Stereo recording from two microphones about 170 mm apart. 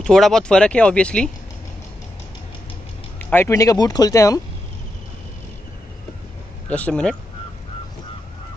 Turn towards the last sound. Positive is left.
turn(degrees=5)  # may be behind; listen again after turning